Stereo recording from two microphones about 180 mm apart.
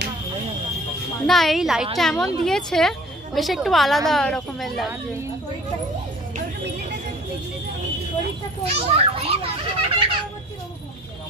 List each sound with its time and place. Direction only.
1.2 s a woman's voice: centre (ahead or behind)
8.7 s children playing: 35° right (ahead or behind)